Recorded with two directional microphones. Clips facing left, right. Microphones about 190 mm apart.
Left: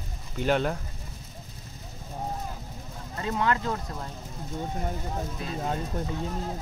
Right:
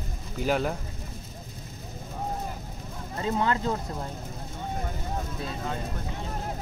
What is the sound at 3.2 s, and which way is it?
Speech, 30° right (ahead or behind).